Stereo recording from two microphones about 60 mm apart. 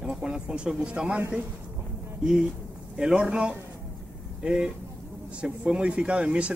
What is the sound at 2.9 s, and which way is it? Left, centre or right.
Speech, centre.